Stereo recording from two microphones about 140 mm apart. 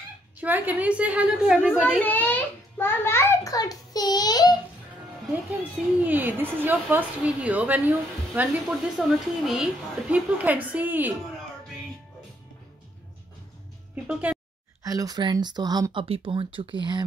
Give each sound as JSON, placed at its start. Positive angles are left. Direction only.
{"t": 0.4, "sound": "a woman's voice", "side_deg": -10}
{"t": 2.0, "sound": "a child's voice", "side_deg": 10}
{"t": 5.3, "sound": "a woman's voice", "side_deg": -10}
{"t": 14.0, "sound": "speech", "side_deg": -5}
{"t": 14.8, "sound": "speech", "side_deg": -25}